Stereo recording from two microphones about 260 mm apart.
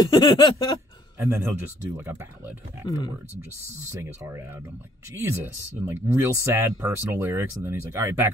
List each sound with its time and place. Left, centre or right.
0.0 s a sound: centre
1.2 s speech: centre
3.9 s speech: centre